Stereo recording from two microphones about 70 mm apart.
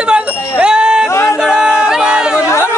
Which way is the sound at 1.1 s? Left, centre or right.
Left.